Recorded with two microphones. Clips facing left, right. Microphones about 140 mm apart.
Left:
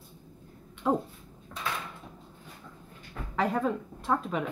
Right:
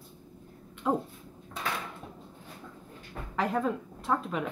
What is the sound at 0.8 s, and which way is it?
Speech, centre (ahead or behind).